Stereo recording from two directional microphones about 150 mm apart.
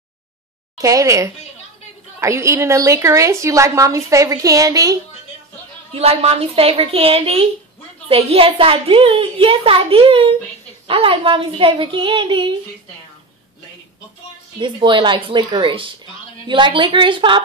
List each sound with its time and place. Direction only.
0.7 s a woman's voice: 20° right (ahead or behind)
5.9 s a woman's voice: 45° right (ahead or behind)
14.6 s a woman's voice: 35° right (ahead or behind)